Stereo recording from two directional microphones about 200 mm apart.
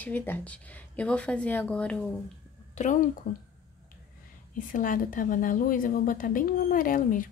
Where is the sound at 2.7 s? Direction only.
35° left (ahead or behind).